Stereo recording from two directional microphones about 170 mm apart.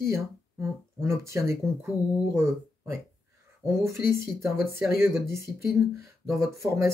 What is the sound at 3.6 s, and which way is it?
Speech, 15° right (ahead or behind).